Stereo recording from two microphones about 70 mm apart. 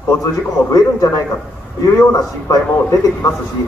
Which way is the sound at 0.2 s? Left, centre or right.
Left.